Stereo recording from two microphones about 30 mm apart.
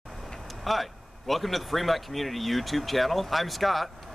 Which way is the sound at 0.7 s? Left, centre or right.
Centre.